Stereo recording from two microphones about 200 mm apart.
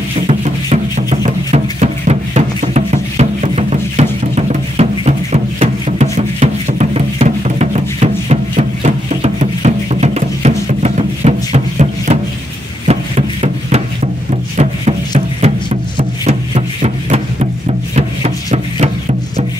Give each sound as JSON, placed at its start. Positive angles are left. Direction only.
{"t": 0.3, "sound": "music", "side_deg": -30}
{"t": 12.8, "sound": "a sound", "side_deg": -30}
{"t": 14.3, "sound": "music", "side_deg": -30}